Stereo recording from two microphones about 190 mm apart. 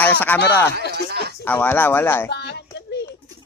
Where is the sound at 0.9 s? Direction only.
60° right (ahead or behind).